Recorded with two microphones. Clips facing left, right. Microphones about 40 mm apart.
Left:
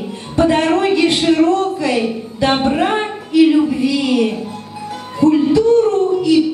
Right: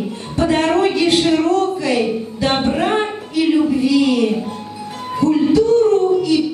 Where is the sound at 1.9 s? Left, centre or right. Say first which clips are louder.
Even; centre.